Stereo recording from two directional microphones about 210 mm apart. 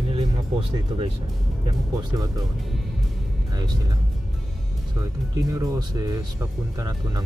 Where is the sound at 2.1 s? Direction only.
15° right (ahead or behind).